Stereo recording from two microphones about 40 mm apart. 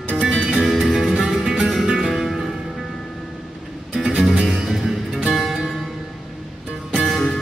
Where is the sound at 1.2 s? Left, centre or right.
Centre.